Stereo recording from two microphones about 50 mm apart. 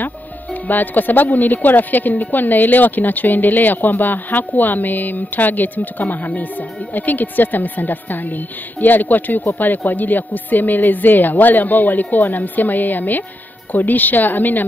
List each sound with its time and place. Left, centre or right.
0.0 s speech: left